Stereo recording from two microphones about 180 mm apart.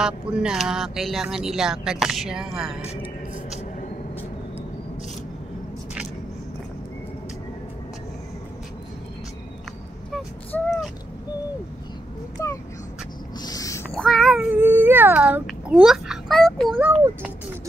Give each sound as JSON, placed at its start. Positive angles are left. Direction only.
{"t": 0.0, "sound": "speech", "side_deg": -5}
{"t": 10.5, "sound": "vehicle", "side_deg": 5}
{"t": 12.4, "sound": "a sound", "side_deg": 15}
{"t": 13.9, "sound": "speech", "side_deg": 0}